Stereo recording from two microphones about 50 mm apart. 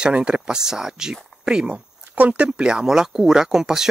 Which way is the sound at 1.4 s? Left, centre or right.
Centre.